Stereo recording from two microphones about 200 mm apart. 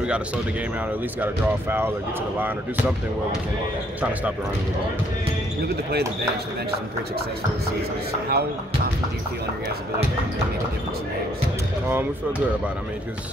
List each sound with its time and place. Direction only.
1.2 s speech: 10° right (ahead or behind)
8.3 s speech: 50° right (ahead or behind)